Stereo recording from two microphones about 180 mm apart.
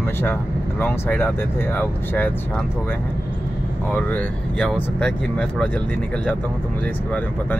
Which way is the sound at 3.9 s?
5° left (ahead or behind).